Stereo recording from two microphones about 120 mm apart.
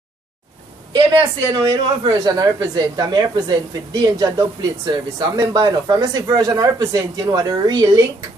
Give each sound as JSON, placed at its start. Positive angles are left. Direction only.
{"t": 1.6, "sound": "speech", "side_deg": -35}